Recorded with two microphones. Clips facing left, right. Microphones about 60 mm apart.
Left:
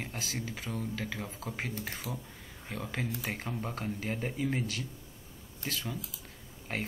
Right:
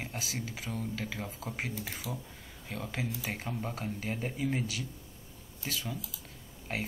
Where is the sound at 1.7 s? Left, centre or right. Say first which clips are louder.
Left 1 dB; left.